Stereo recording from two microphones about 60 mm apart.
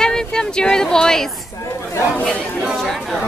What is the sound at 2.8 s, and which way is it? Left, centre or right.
Speech, centre.